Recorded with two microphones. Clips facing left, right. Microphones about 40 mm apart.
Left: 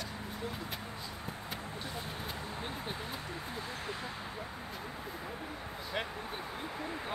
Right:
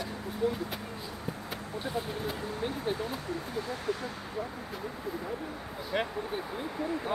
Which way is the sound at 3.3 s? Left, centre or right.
Left.